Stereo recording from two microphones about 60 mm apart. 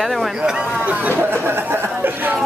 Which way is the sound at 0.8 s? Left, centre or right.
Right.